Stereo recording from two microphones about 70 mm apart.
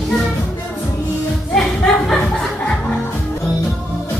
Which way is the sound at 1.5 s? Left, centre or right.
Centre.